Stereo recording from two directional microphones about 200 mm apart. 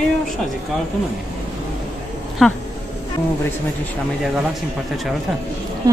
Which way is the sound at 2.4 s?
Centre (ahead or behind).